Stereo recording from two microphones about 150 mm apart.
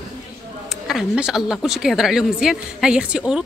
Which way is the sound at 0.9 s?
5° right (ahead or behind).